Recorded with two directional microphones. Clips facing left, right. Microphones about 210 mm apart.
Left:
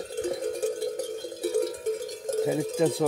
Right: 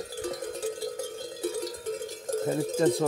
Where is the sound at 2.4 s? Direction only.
10° left (ahead or behind).